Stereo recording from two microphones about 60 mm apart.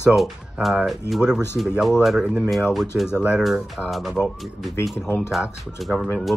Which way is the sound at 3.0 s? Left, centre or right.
Centre.